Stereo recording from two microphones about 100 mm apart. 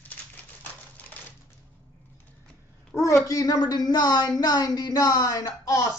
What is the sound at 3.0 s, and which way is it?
Speech, 30° left (ahead or behind).